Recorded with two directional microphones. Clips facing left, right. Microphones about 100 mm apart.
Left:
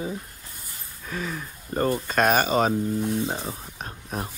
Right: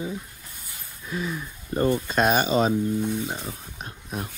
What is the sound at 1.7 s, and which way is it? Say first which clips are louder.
Speech: right 1 dB; 40° left (ahead or behind).